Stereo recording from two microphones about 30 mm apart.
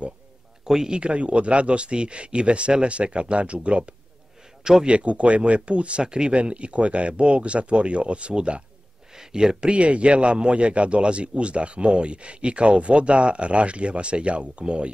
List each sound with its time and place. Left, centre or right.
0.7 s a man's voice: centre
0.9 s a man's voice: right
6.0 s a man's voice: right
9.1 s speech: right
9.7 s a man's voice: right